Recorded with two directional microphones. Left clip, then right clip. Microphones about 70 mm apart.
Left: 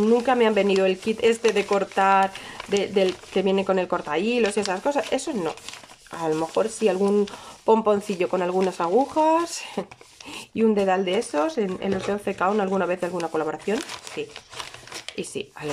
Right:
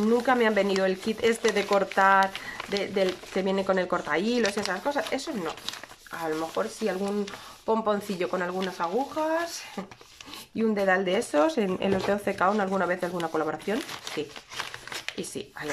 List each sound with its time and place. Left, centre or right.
0.0 s speech: left
4.8 s speech: left
7.9 s speech: left
8.8 s speech: left
9.1 s speech: left
10.5 s speech: left
11.4 s speech: centre
12.4 s speech: centre
15.1 s speech: centre